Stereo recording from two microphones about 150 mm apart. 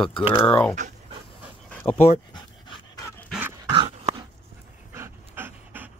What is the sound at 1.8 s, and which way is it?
Speech, 50° left (ahead or behind).